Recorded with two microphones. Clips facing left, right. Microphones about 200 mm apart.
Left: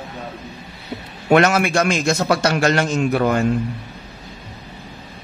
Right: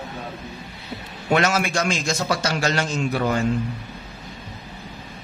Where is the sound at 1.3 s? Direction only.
60° left (ahead or behind).